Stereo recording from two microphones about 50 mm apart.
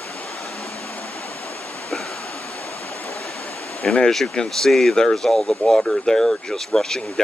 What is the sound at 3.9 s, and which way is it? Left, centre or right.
Speech, centre.